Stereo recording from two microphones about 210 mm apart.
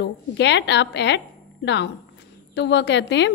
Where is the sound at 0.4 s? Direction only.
55° left (ahead or behind).